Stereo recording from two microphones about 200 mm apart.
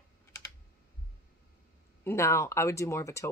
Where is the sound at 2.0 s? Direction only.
10° left (ahead or behind).